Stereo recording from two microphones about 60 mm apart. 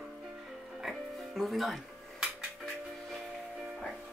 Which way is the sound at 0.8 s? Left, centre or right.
Centre.